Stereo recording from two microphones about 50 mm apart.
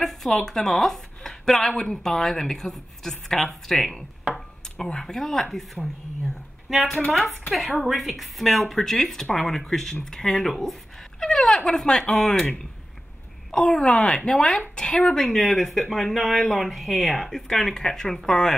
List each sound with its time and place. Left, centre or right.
0.0 s a woman's voice: centre
4.9 s speech: centre
6.2 s a sound: centre
7.1 s a woman's voice: centre